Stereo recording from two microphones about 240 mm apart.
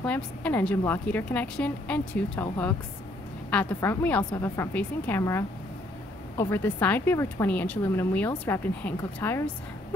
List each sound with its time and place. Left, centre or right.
0.0 s a woman's voice: centre